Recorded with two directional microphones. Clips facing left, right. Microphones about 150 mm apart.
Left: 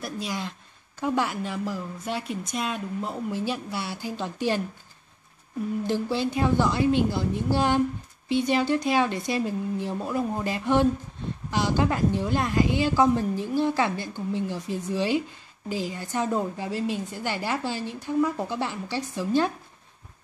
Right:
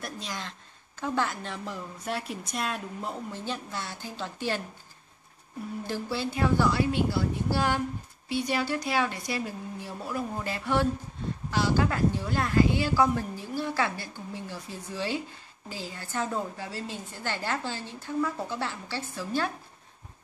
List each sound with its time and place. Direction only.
0.0 s speech: 5° left (ahead or behind)
5.9 s a woman's voice: 20° left (ahead or behind)